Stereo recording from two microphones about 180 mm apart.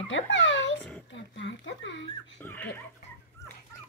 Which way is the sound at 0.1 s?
90° left.